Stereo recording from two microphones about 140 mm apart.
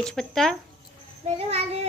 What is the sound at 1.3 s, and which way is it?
Speech, 45° right (ahead or behind).